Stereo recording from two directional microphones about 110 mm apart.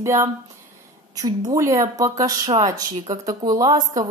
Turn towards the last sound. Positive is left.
turn(degrees=-35)  # may be behind; listen again after turning